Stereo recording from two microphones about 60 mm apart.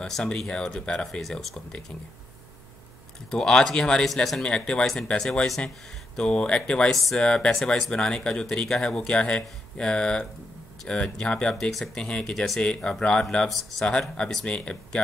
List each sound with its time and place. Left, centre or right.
0.0 s speech: centre
1.2 s speech: centre
3.3 s speech: centre
4.5 s speech: centre
6.9 s speech: centre
7.2 s speech: centre
12.0 s speech: centre